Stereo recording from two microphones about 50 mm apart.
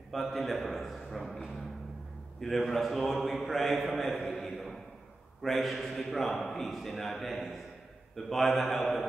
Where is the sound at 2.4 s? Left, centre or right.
Centre.